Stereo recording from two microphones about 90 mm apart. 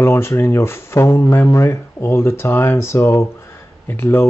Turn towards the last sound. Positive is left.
turn(degrees=25)  # may be behind; listen again after turning